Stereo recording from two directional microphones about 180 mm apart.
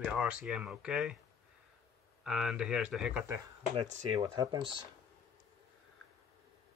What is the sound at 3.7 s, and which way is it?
Speech, 30° right (ahead or behind).